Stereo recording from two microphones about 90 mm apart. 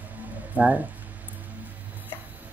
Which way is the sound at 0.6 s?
15° right (ahead or behind).